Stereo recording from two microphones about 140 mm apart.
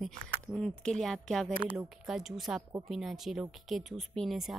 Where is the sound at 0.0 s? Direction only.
5° left (ahead or behind).